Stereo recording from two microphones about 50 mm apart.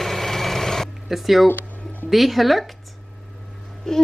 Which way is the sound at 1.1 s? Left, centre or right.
Centre.